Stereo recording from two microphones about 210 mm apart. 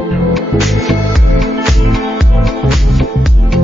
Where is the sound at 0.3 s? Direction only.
Centre (ahead or behind).